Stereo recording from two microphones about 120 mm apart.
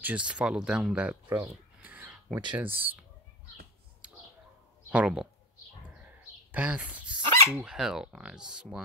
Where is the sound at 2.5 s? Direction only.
15° right (ahead or behind).